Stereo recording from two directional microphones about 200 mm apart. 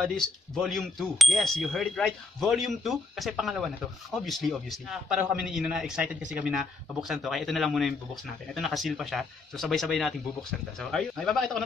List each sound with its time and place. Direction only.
0.0 s speech: 5° left (ahead or behind)